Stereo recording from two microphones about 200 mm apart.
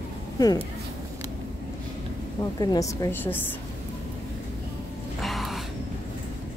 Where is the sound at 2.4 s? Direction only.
20° left (ahead or behind).